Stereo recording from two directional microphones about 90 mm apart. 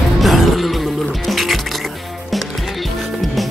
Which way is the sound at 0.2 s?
Centre (ahead or behind).